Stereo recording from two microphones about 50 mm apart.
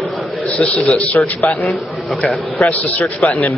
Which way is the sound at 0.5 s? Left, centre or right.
Left.